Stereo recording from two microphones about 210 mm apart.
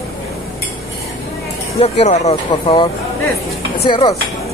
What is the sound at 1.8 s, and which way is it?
Speech, 30° left (ahead or behind).